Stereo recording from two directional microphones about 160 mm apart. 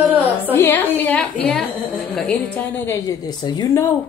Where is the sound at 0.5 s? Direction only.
15° left (ahead or behind).